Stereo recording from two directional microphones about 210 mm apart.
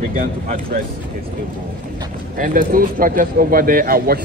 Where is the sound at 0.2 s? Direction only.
45° right (ahead or behind).